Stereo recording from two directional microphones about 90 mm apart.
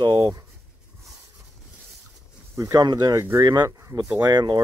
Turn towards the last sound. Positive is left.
turn(degrees=-50)  # may be behind; listen again after turning